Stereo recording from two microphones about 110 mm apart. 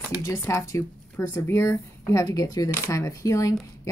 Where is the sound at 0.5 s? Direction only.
30° left (ahead or behind).